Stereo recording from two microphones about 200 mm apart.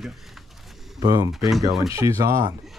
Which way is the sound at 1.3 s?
Centre (ahead or behind).